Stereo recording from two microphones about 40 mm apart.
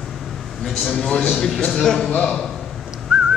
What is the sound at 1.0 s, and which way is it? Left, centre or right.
Speech, left.